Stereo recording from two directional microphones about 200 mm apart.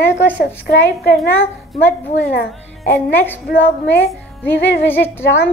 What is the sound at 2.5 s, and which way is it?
Speech, centre (ahead or behind).